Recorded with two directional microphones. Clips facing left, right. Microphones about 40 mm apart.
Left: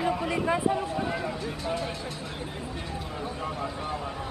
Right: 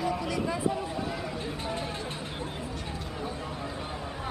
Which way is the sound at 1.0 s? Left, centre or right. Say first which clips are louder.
Left 4 dB; centre.